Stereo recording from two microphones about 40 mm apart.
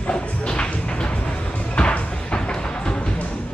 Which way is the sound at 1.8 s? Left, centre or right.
Left.